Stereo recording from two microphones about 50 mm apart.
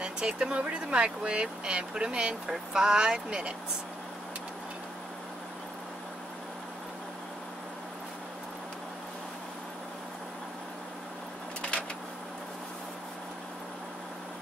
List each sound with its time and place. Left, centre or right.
0.0 s speech: centre